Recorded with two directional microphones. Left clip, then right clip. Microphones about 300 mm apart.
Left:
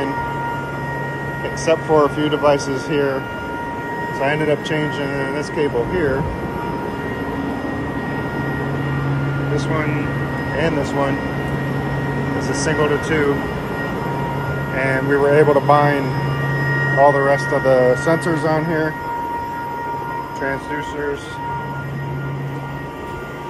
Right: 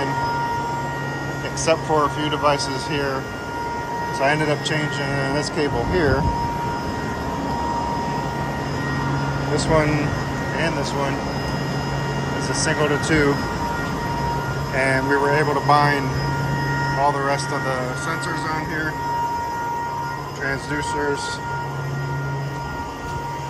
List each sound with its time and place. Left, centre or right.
1.7 s speech: centre
4.2 s speech: centre
5.3 s speech: right
10.6 s speech: centre
12.4 s speech: centre
14.8 s speech: centre
17.0 s speech: centre